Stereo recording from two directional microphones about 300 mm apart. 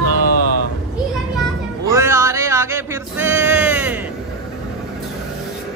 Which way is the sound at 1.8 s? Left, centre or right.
Centre.